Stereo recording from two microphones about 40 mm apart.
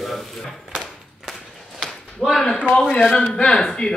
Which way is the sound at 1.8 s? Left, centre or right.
Centre.